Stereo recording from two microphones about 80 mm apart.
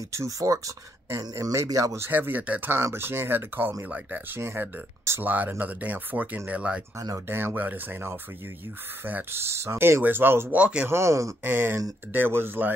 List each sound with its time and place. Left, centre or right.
0.1 s speech: right
2.0 s speech: right
2.8 s speech: right; by 6.8 s centre
7.2 s speech: right
10.5 s speech: centre
10.9 s speech: right
11.4 s speech: right